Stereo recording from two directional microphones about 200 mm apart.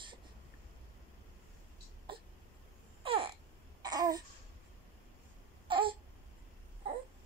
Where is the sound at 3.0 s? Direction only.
25° right (ahead or behind).